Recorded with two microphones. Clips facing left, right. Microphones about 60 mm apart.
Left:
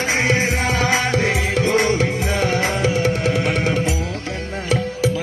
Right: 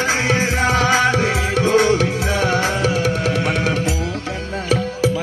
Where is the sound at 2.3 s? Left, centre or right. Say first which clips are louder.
Right 3 dB; right.